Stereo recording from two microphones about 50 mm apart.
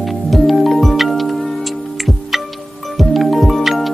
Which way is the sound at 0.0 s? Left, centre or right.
Centre.